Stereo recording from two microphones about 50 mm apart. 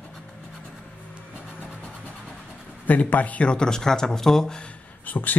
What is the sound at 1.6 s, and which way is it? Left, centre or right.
Vehicle, left.